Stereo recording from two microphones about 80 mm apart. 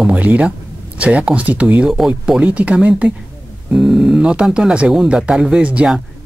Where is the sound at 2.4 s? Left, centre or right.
Centre.